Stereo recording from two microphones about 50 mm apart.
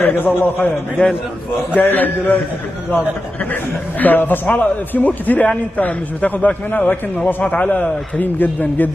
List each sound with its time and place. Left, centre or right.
0.0 s a man's voice: left
1.0 s a man's voice: left
1.8 s speech: left
4.0 s speech: left